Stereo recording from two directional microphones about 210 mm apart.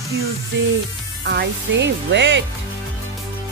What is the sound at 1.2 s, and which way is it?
Speech, 55° right (ahead or behind).